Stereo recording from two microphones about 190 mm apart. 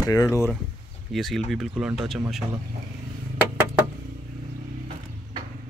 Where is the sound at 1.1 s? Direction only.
Centre (ahead or behind).